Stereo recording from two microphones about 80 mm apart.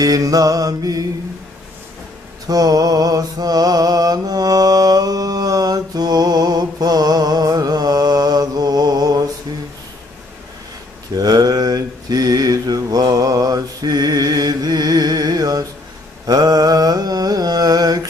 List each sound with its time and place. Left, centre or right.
0.0 s mantra: right
2.4 s mantra: right
11.1 s mantra: right